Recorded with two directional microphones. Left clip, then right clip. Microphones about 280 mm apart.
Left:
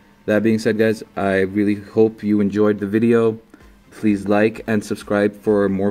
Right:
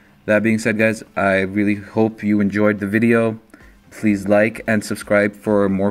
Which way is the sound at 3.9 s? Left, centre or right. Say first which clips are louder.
Even; right.